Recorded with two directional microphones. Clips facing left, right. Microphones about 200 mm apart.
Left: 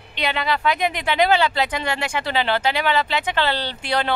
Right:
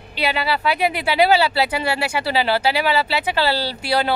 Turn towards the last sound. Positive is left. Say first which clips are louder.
# right 3 dB
turn(degrees=-10)  # may be behind; listen again after turning